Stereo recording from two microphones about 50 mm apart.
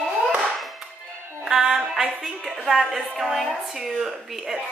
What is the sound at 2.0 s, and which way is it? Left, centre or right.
Speech, centre.